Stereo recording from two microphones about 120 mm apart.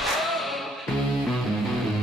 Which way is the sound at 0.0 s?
Centre (ahead or behind).